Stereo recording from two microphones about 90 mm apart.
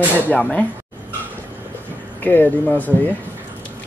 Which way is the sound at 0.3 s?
15° left (ahead or behind).